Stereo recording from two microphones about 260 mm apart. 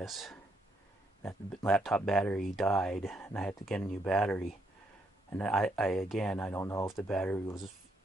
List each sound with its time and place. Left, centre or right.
0.0 s speech: centre